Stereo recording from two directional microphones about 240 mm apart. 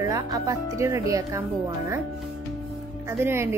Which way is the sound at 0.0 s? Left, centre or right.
Centre.